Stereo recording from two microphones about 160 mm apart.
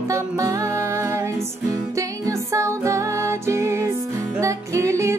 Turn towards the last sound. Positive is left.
turn(degrees=-20)  # may be behind; listen again after turning